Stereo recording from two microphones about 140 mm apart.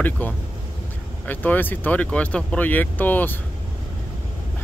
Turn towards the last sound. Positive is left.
turn(degrees=15)  # may be behind; listen again after turning